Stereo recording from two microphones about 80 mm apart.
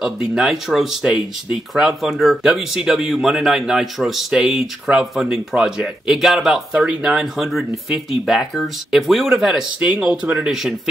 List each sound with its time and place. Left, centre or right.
0.3 s speech: centre